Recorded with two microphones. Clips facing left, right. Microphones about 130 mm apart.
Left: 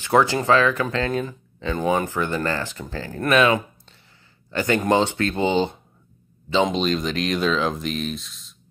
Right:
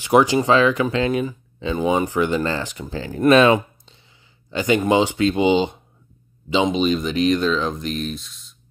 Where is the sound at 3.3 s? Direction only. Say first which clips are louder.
Right 3 dB; 30° right (ahead or behind).